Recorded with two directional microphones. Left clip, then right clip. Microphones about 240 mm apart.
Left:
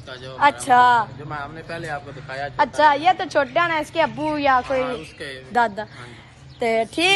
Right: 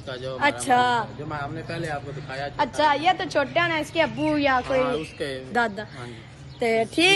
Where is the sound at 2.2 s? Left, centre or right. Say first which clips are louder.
Left 5 dB; left.